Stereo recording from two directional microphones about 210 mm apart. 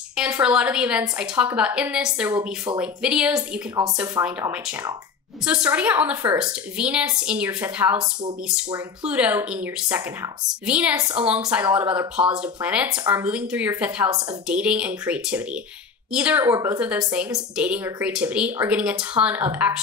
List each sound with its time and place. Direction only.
0.4 s speech: 5° right (ahead or behind)
2.2 s a woman's voice: 15° right (ahead or behind)
2.8 s a woman's voice: 5° right (ahead or behind)
9.0 s a woman's voice: 5° right (ahead or behind)